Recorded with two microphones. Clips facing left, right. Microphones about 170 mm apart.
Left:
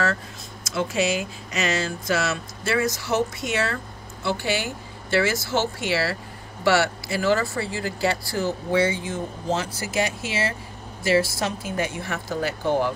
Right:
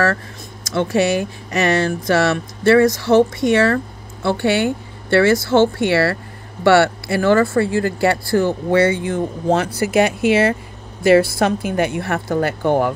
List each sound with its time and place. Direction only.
1.0 s speech: 60° right (ahead or behind)